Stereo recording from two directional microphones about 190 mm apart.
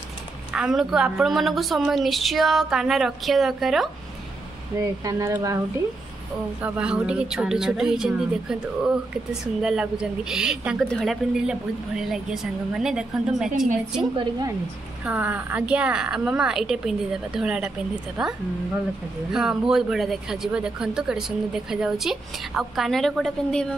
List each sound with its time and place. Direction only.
0.6 s a woman's voice: centre (ahead or behind)
4.7 s speech: 15° right (ahead or behind)
6.6 s a woman's voice: 5° right (ahead or behind)
15.0 s a woman's voice: 10° right (ahead or behind)
19.3 s a woman's voice: 5° right (ahead or behind)